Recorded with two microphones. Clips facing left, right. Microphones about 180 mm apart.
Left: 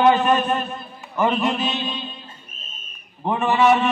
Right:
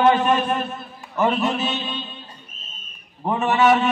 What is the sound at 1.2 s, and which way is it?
Speech, 5° right (ahead or behind).